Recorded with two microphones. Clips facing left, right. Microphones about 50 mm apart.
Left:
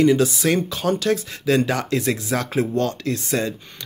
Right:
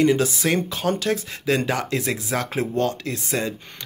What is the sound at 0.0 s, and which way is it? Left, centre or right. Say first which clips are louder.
Speech: left 2 dB; right.